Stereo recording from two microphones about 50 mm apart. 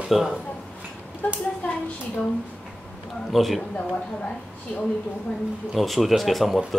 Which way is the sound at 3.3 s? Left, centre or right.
Centre.